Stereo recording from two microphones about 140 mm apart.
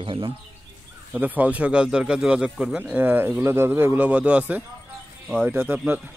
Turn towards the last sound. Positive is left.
turn(degrees=-15)  # may be behind; listen again after turning